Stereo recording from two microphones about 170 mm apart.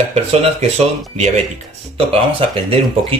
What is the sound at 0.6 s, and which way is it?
Speech, 40° right (ahead or behind).